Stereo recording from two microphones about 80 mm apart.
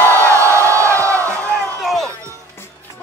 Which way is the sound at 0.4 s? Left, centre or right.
Right.